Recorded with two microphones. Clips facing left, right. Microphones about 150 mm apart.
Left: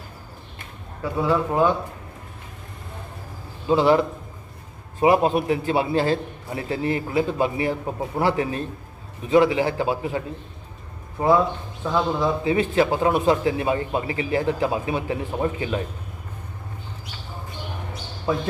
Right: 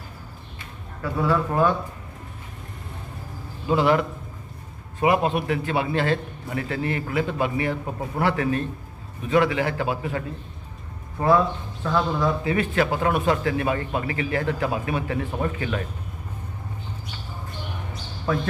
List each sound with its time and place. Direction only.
1.0 s a man's voice: 15° left (ahead or behind)
3.6 s a man's voice: 30° left (ahead or behind)
5.0 s a man's voice: 30° left (ahead or behind)
7.8 s a man's voice: 15° left (ahead or behind)
8.2 s a man's voice: 30° left (ahead or behind)
18.2 s speech: 15° left (ahead or behind)